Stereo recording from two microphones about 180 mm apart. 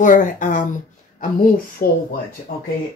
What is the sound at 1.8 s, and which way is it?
Speech, 55° left (ahead or behind).